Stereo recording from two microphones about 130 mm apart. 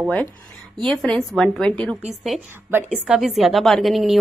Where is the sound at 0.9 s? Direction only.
5° left (ahead or behind).